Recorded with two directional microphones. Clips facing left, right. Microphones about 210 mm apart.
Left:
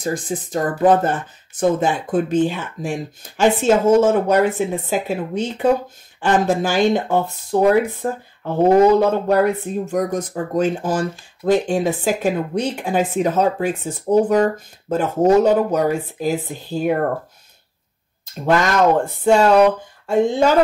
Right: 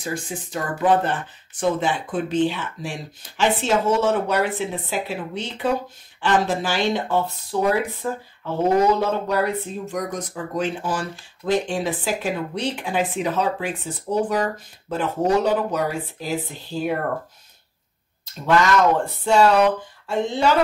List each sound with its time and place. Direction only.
0.0 s speech: 45° left (ahead or behind)
18.2 s speech: 45° left (ahead or behind)